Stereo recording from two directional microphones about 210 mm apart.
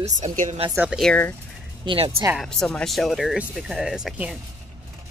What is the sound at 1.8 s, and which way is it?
Speech, 25° right (ahead or behind).